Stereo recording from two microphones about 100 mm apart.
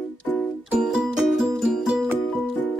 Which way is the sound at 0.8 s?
5° right (ahead or behind).